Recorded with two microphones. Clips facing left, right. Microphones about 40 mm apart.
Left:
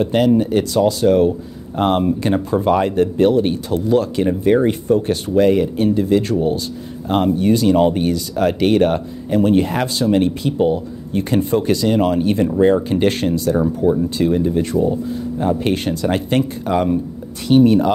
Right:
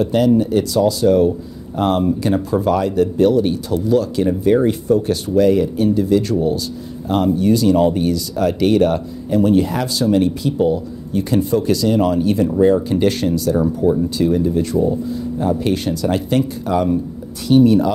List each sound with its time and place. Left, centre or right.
0.0 s speech: left
13.6 s speech: left